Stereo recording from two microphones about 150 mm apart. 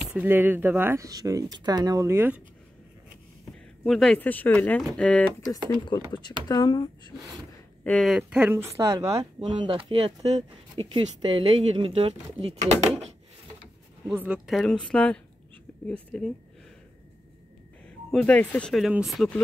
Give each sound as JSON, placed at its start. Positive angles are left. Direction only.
{"t": 0.0, "sound": "speech", "side_deg": -10}
{"t": 3.8, "sound": "speech", "side_deg": 5}
{"t": 5.9, "sound": "speech", "side_deg": 30}
{"t": 7.8, "sound": "speech", "side_deg": 10}
{"t": 8.1, "sound": "speech", "side_deg": -5}
{"t": 14.1, "sound": "speech", "side_deg": -10}
{"t": 18.1, "sound": "speech", "side_deg": 10}